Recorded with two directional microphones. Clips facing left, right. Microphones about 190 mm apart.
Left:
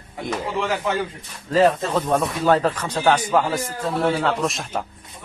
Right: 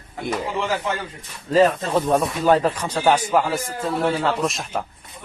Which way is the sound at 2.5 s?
10° right (ahead or behind).